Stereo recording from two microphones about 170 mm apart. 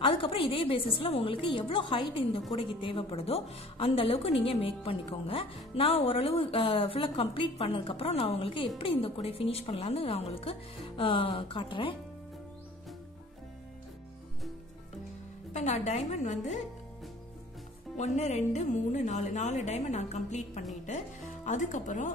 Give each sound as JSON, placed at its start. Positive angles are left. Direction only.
{"t": 0.0, "sound": "speech", "side_deg": 30}
{"t": 15.5, "sound": "a woman's voice", "side_deg": 45}
{"t": 17.9, "sound": "speech", "side_deg": 45}